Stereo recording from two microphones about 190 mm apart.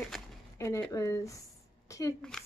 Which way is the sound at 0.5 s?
15° left (ahead or behind).